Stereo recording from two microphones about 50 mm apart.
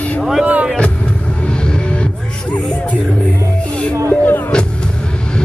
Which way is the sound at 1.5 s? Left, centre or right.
Centre.